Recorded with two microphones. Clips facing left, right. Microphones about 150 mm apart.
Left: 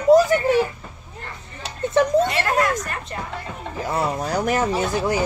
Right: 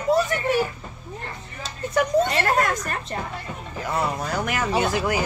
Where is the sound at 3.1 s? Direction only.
35° right (ahead or behind).